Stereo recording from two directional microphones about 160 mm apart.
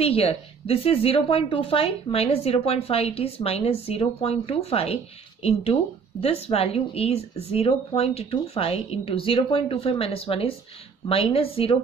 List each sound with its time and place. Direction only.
0.0 s a woman's voice: 35° left (ahead or behind)